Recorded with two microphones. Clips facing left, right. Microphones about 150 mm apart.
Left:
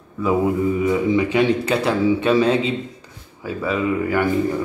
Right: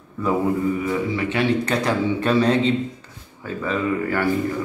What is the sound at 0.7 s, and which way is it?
Speech, 20° left (ahead or behind).